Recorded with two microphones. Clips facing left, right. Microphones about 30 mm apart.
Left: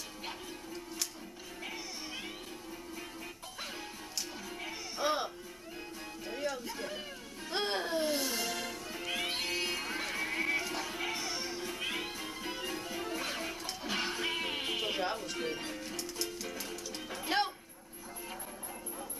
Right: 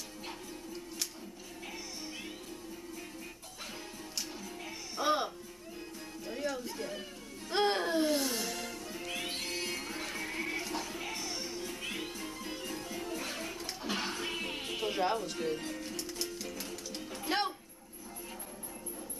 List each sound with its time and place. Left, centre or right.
5.0 s music: centre
7.5 s music: centre; by 14.8 s left
14.8 s music: centre
15.3 s music: left
15.7 s music: centre
17.1 s music: centre